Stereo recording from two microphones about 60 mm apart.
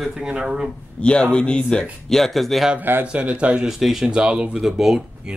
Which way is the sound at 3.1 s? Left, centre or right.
Centre.